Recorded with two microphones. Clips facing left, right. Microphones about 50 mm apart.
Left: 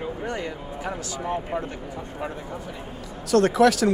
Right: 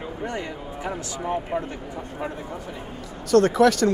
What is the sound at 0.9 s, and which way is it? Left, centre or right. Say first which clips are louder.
Speech: right 2 dB; centre.